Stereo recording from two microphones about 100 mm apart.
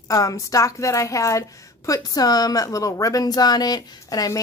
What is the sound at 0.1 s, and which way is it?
A woman's voice, 35° left (ahead or behind).